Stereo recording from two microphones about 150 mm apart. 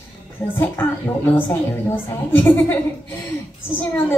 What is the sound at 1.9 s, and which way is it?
Speech, 15° left (ahead or behind).